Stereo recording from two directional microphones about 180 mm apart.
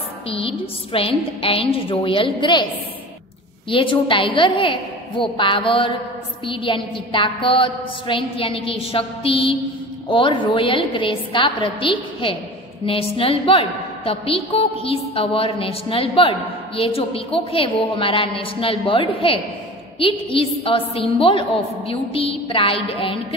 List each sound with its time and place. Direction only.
0.3 s a woman's voice: 30° left (ahead or behind)
3.7 s a woman's voice: 30° left (ahead or behind)